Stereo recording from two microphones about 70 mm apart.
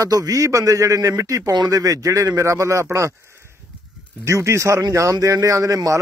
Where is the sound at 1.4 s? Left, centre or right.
Right.